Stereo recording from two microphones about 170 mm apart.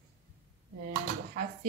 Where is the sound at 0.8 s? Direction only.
65° right (ahead or behind).